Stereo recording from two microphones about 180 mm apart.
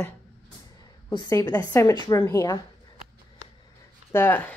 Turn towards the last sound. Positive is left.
turn(degrees=10)  # may be behind; listen again after turning